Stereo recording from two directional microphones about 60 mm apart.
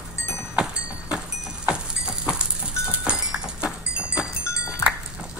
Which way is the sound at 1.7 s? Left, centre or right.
Centre.